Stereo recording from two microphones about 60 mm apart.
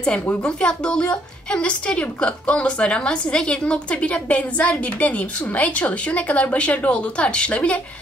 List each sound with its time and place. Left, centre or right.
0.0 s a woman's voice: centre